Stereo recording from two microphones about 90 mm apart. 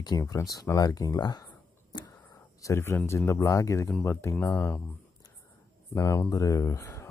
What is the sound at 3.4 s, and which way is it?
Speech, 35° left (ahead or behind).